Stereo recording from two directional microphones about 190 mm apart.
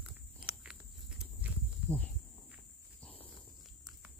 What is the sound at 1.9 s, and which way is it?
Speech, 10° left (ahead or behind).